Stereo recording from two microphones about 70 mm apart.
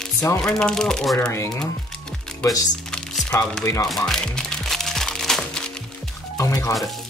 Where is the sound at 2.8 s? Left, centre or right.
Centre.